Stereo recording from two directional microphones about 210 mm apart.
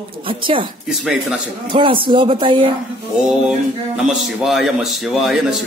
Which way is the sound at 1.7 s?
25° right (ahead or behind).